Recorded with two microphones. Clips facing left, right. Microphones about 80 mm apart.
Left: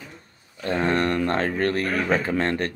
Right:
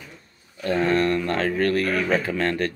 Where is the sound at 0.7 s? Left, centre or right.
Left.